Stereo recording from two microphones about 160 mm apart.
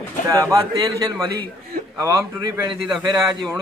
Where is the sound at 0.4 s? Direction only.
20° right (ahead or behind).